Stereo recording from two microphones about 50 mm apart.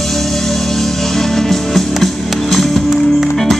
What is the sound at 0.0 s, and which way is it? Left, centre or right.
Music, centre.